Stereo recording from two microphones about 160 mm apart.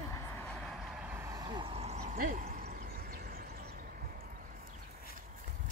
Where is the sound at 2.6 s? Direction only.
65° right (ahead or behind).